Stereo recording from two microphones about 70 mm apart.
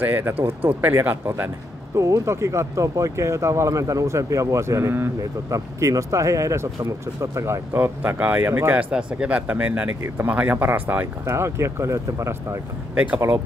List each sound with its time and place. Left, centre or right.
0.0 s speech: right
2.0 s speech: right
8.2 s speech: right
8.5 s speech: right
8.7 s speech: centre
10.0 s speech: right
11.2 s speech: right
12.9 s speech: right